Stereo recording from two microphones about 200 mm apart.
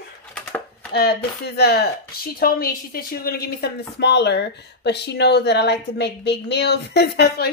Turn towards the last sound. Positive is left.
turn(degrees=55)  # may be behind; listen again after turning